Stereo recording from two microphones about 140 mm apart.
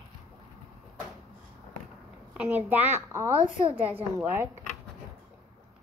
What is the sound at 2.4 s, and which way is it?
A child's voice, 10° right (ahead or behind).